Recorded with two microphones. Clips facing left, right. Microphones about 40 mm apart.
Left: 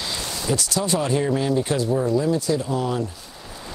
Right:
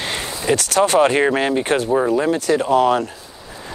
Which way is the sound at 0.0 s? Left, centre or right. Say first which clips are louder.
Right 5 dB; right.